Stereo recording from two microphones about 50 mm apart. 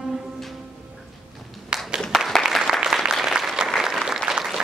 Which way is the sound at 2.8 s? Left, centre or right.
Centre.